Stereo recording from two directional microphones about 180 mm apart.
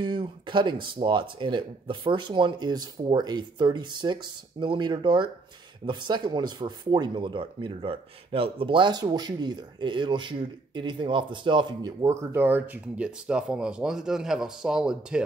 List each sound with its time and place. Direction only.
0.0 s speech: 25° right (ahead or behind); by 15.2 s 5° right (ahead or behind)